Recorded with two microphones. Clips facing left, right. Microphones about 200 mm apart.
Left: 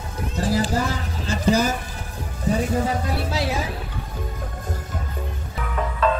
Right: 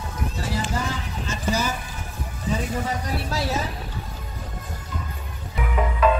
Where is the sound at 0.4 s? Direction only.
35° left (ahead or behind).